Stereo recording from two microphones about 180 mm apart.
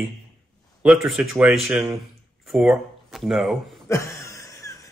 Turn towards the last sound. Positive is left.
turn(degrees=20)  # may be behind; listen again after turning